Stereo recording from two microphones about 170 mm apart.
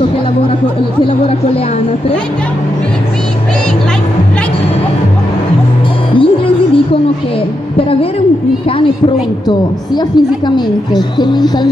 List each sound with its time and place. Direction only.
6.1 s music: 30° left (ahead or behind)
7.7 s a woman's voice: 35° left (ahead or behind)
9.5 s a woman's voice: 25° left (ahead or behind)